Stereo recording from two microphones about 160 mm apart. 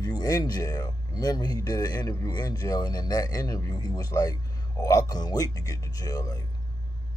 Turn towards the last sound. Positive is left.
turn(degrees=25)  # may be behind; listen again after turning